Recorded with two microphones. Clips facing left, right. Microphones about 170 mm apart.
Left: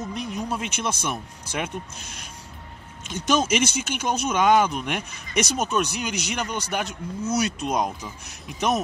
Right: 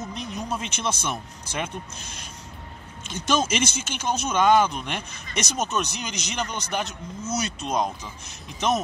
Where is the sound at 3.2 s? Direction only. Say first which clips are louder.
Left 2 dB; 10° left (ahead or behind).